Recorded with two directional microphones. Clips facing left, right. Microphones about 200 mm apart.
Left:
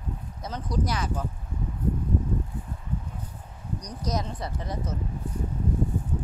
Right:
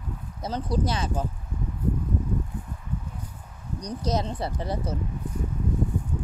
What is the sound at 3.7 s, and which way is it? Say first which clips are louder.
Speech: right 4 dB; 30° right (ahead or behind).